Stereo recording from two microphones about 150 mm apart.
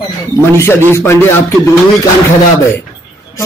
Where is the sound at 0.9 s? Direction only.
15° left (ahead or behind).